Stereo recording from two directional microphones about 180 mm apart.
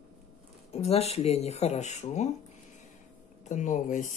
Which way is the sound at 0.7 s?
35° left (ahead or behind).